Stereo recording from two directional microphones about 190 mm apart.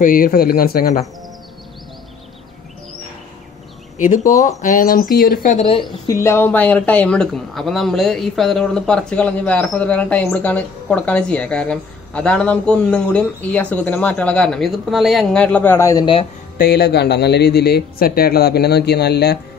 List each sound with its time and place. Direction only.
0.0 s speech: 45° left (ahead or behind)
4.0 s speech: 40° left (ahead or behind)
5.7 s a woman's voice: 25° left (ahead or behind)
6.2 s speech: 10° left (ahead or behind)
16.5 s speech: 55° left (ahead or behind)